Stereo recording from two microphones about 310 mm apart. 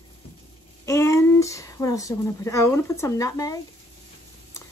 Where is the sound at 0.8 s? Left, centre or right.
Centre.